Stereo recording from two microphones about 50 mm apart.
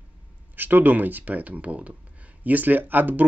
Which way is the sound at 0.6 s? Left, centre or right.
Right.